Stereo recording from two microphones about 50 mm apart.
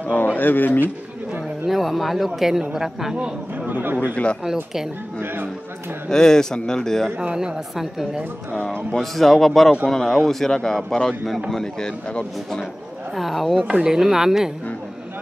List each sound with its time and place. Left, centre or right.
0.0 s speech: left
1.7 s a woman's voice: centre
3.5 s a man's voice: right
4.1 s speech: left
5.2 s speech: right
6.0 s a man's voice: centre
7.2 s a woman's voice: centre
8.9 s a man's voice: centre
13.1 s speech: centre
13.6 s a woman's voice: centre